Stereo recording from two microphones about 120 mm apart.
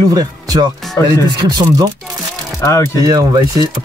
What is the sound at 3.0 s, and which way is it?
Speech, 30° right (ahead or behind).